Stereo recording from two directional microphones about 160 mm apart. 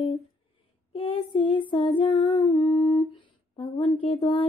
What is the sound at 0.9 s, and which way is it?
Humming, 35° left (ahead or behind).